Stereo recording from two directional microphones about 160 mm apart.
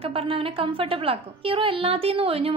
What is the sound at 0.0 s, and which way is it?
A woman's voice, 35° right (ahead or behind).